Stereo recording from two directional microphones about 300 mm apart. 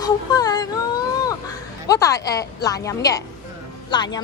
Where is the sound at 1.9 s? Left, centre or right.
Centre.